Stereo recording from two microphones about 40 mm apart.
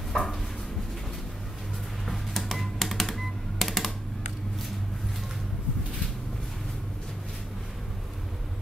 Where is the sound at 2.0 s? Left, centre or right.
Centre.